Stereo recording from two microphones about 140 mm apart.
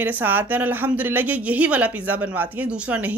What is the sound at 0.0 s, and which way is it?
A woman's voice, 15° right (ahead or behind).